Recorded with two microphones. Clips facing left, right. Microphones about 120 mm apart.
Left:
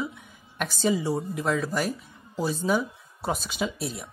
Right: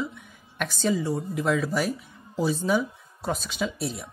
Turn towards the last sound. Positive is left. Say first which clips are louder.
# right 1 dB
turn(degrees=0)  # may be behind; listen again after turning